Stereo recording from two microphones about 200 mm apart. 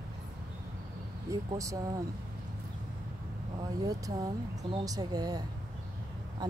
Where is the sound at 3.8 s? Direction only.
20° right (ahead or behind).